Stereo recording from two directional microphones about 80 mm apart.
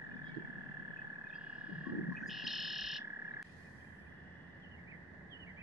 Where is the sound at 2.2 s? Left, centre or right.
Centre.